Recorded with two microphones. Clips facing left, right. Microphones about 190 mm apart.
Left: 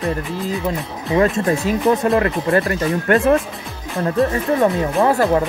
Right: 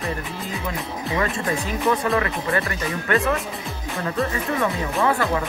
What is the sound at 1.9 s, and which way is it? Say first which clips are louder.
Speech: left 5 dB; 40° left (ahead or behind).